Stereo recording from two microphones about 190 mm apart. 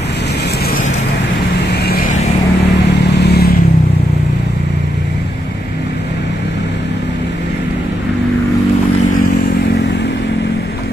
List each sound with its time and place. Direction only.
1.7 s vehicle: 55° left (ahead or behind)
3.3 s vehicle: 55° left (ahead or behind)